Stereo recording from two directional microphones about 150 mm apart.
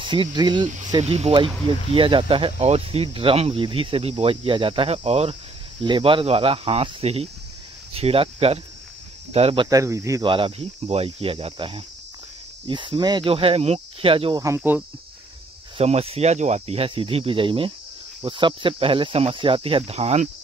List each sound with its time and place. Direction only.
0.0 s speech: 30° right (ahead or behind)
1.0 s speech: 40° right (ahead or behind)
5.9 s speech: 35° right (ahead or behind)
9.7 s speech: 20° right (ahead or behind)
10.2 s speech: 35° right (ahead or behind)
14.4 s speech: 15° right (ahead or behind)
15.8 s speech: 40° right (ahead or behind)